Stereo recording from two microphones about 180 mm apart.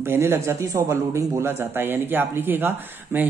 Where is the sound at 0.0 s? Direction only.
15° right (ahead or behind).